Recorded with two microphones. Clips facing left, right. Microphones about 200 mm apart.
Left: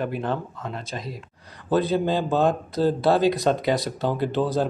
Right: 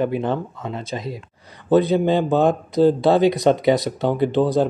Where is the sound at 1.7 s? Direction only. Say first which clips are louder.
Right 5 dB; 20° right (ahead or behind).